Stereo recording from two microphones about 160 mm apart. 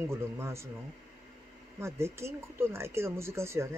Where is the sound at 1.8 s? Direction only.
15° right (ahead or behind).